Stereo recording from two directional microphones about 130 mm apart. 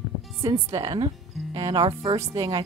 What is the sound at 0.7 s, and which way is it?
Speech, 30° right (ahead or behind).